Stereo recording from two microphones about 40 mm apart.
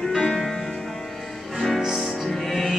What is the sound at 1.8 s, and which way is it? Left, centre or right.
Music, centre.